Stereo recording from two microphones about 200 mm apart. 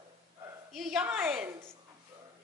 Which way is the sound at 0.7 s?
5° right (ahead or behind).